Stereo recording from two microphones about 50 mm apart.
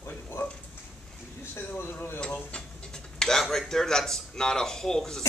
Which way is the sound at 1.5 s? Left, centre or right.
Left.